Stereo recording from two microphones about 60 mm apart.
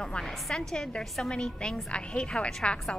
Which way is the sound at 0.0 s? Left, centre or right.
Centre.